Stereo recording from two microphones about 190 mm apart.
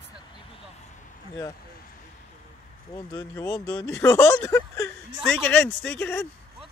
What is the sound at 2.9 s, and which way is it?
Speech, 15° left (ahead or behind).